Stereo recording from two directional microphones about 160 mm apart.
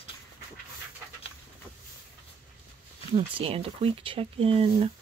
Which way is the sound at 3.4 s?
35° right (ahead or behind).